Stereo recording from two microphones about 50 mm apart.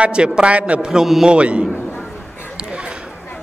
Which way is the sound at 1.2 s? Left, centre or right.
Right.